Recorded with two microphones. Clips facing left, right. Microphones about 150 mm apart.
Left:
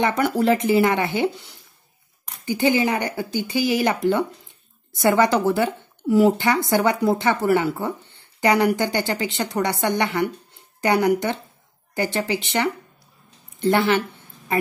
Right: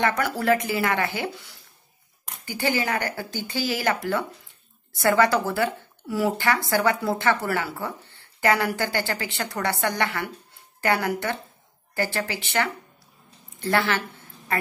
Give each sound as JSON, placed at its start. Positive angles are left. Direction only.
{"t": 0.0, "sound": "speech", "side_deg": 20}